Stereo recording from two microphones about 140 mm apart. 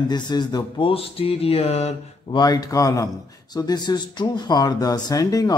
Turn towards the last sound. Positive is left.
turn(degrees=25)  # may be behind; listen again after turning